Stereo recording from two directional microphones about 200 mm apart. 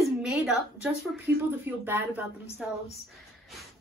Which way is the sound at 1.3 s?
15° right (ahead or behind).